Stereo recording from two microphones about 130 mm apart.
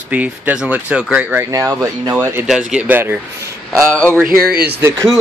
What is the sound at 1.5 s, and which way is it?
Speech, 25° right (ahead or behind).